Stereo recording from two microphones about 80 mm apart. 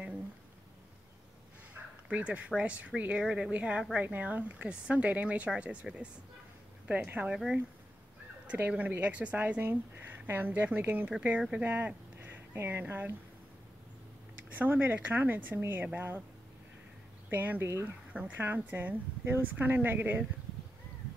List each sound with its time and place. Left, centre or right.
1.7 s a sound: centre
2.5 s speech: centre
7.1 s a woman's voice: centre
8.5 s a woman's voice: right
14.5 s a woman's voice: right
17.3 s a woman's voice: right